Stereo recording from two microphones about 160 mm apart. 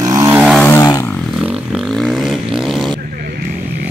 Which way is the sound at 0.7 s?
20° left (ahead or behind).